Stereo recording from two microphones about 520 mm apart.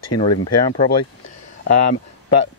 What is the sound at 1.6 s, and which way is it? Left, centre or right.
Speech, left.